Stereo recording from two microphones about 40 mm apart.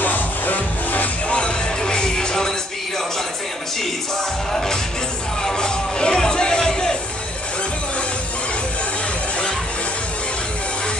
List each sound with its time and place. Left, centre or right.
0.0 s music: left
1.3 s music: left
4.5 s music: centre